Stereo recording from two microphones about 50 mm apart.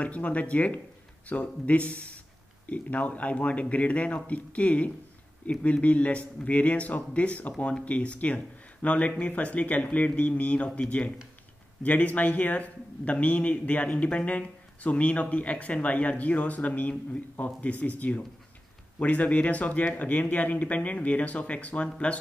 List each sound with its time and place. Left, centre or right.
0.0 s a man's voice: left